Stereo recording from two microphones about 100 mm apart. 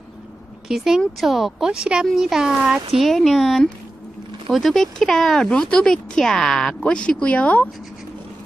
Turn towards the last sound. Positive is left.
turn(degrees=0)  # may be behind; listen again after turning